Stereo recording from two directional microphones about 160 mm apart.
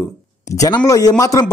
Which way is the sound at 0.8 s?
20° left (ahead or behind).